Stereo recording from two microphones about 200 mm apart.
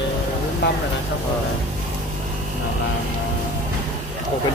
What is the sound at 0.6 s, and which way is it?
Speech, 55° left (ahead or behind).